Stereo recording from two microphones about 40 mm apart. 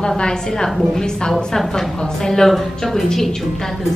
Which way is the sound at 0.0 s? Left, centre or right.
Left.